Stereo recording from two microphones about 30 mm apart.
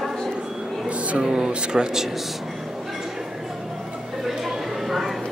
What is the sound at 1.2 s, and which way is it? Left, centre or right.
Speech, right.